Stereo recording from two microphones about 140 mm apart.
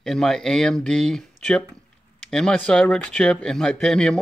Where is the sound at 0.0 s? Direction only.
5° left (ahead or behind).